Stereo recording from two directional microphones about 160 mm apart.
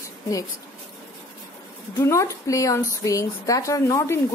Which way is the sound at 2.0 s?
15° left (ahead or behind).